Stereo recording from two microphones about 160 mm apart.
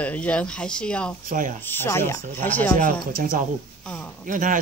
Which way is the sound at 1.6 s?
15° left (ahead or behind).